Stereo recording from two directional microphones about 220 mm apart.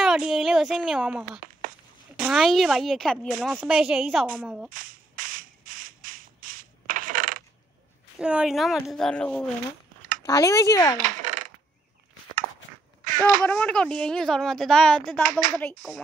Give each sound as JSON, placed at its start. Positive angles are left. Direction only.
{"t": 0.0, "sound": "a sound", "side_deg": 0}
{"t": 1.4, "sound": "a sound", "side_deg": -40}
{"t": 2.1, "sound": "speech", "side_deg": -5}
{"t": 4.6, "sound": "gunshot", "side_deg": -40}
{"t": 8.2, "sound": "speech", "side_deg": -5}
{"t": 10.2, "sound": "speech", "side_deg": 15}
{"t": 11.0, "sound": "coin", "side_deg": -35}
{"t": 13.0, "sound": "a sound", "side_deg": -40}
{"t": 13.5, "sound": "speech", "side_deg": 5}